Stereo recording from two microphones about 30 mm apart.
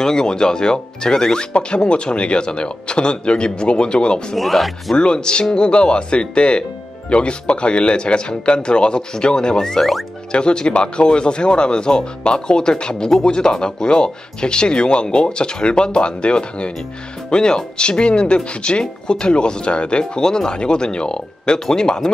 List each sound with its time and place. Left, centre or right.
0.0 s speech: left
1.9 s speech: left
4.4 s speech: centre
4.9 s speech: left
9.8 s speech: centre
10.3 s speech: left
21.6 s speech: left